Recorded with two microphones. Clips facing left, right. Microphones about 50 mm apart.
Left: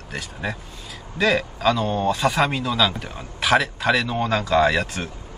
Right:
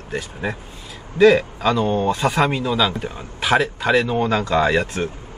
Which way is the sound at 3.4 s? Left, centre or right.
Centre.